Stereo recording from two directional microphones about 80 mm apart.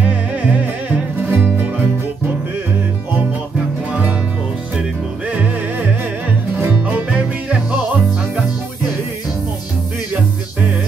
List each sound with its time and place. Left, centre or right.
0.0 s music: centre
5.3 s music: centre